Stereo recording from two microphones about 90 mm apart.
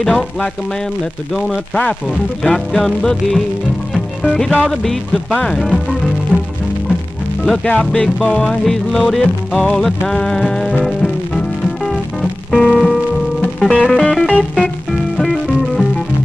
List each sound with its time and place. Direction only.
0.0 s music: centre (ahead or behind)
2.0 s music: 5° left (ahead or behind)
6.3 s music: 15° left (ahead or behind)
7.4 s speech: 10° left (ahead or behind)
7.9 s music: 5° left (ahead or behind)